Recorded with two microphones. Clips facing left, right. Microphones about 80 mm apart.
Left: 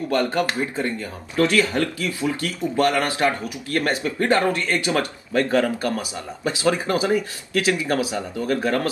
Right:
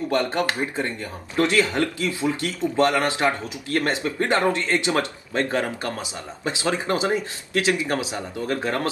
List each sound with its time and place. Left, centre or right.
0.1 s speech: right